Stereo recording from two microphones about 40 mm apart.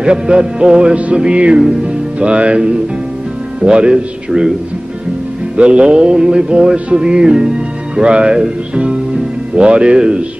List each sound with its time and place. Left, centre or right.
0.0 s music: right
1.6 s speech: centre
2.1 s music: right
3.6 s speech: right
5.6 s music: right